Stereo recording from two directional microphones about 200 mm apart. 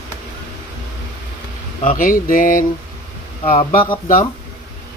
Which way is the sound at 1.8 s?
40° left (ahead or behind).